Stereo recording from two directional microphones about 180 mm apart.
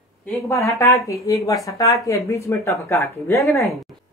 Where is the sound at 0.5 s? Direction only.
15° left (ahead or behind).